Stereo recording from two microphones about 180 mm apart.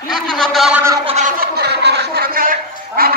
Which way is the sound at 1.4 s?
65° right (ahead or behind).